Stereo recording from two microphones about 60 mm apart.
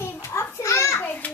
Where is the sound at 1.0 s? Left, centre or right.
Left.